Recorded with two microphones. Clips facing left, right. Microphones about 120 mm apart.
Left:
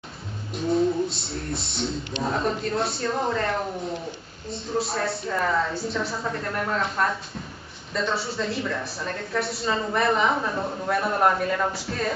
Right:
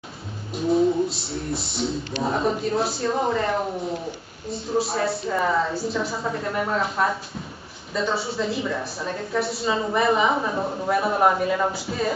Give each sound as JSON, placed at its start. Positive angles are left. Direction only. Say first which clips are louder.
{"t": 0.6, "sound": "a woman's voice", "louder": "right 3 dB", "side_deg": 0}